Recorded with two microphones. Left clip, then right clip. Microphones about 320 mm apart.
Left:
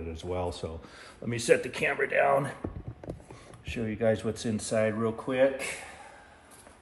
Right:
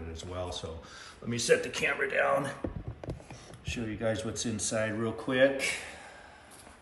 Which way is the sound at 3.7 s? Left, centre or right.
Centre.